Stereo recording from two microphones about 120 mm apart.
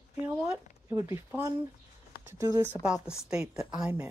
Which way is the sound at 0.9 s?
25° right (ahead or behind).